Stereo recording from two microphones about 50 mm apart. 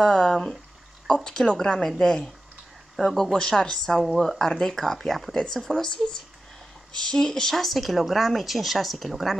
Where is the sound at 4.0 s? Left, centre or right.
Centre.